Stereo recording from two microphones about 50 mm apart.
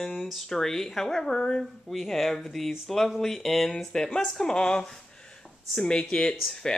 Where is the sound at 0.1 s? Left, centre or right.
Centre.